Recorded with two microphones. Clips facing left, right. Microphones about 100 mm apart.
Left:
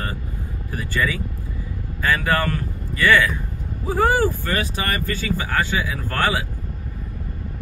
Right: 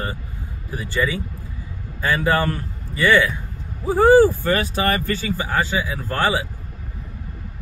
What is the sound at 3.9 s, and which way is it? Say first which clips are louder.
Speech: right 6 dB; 30° right (ahead or behind).